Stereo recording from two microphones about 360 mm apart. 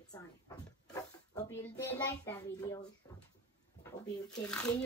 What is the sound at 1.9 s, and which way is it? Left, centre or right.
Speech, centre.